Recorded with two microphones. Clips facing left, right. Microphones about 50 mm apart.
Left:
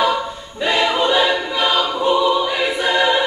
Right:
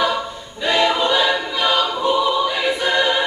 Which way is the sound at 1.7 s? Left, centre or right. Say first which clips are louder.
Left 1 dB; centre.